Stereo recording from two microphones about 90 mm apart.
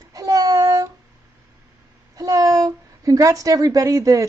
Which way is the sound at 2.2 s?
40° right (ahead or behind).